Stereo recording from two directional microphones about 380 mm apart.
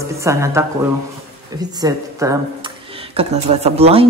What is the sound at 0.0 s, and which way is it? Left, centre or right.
A woman's voice, centre.